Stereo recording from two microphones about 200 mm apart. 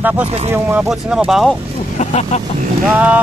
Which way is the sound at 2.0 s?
35° left (ahead or behind).